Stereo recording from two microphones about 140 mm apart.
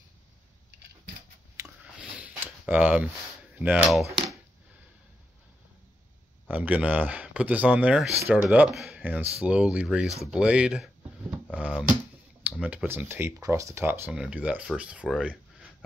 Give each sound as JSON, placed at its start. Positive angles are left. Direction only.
{"t": 2.0, "sound": "a sound", "side_deg": -10}
{"t": 3.5, "sound": "speech", "side_deg": -10}
{"t": 3.9, "sound": "speech", "side_deg": 0}
{"t": 6.5, "sound": "speech", "side_deg": -10}